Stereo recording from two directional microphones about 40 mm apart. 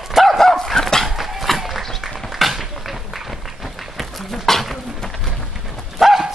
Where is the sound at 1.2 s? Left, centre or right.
Centre.